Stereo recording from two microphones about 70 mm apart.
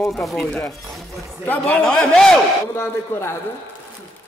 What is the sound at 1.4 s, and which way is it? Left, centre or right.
Speech, left.